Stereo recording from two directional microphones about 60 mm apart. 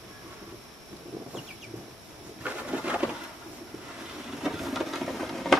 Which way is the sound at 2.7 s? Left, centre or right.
Centre.